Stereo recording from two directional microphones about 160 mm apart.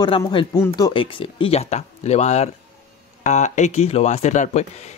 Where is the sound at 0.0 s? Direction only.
30° left (ahead or behind).